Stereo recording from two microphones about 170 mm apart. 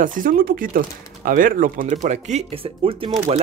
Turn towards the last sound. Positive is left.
turn(degrees=-35)  # may be behind; listen again after turning